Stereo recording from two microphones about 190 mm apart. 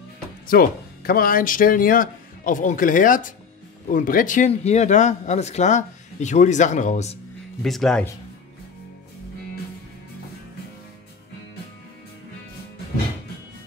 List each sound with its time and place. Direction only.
0.5 s speech: 50° left (ahead or behind)
7.6 s speech: centre (ahead or behind)